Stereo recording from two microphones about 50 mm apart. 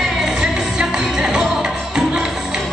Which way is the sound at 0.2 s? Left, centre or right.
Centre.